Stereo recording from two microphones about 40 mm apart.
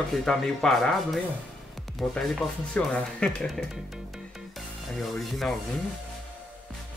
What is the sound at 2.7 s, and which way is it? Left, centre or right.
Speech, left.